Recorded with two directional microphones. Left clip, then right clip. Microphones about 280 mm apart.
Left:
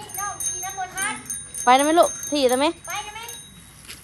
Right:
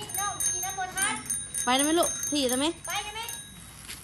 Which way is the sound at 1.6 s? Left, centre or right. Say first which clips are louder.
Left 9 dB; centre.